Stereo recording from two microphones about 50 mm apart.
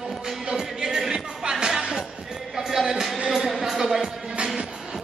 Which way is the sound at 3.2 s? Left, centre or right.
Centre.